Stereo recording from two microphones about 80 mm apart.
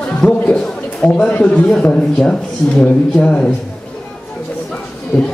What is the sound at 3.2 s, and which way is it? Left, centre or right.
Speech, centre.